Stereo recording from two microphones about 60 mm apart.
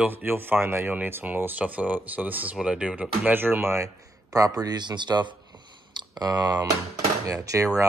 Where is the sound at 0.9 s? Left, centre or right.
Right.